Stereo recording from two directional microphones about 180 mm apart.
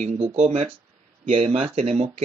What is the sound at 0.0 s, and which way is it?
Speech, 35° right (ahead or behind).